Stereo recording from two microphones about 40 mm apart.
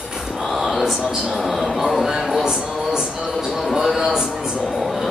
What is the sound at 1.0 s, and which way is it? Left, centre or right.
Speech, centre.